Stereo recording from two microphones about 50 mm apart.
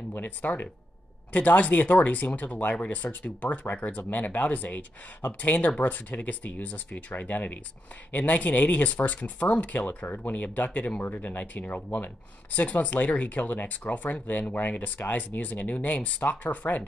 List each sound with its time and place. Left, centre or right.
0.4 s speech: left